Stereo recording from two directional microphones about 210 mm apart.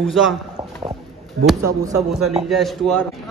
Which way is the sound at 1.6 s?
15° right (ahead or behind).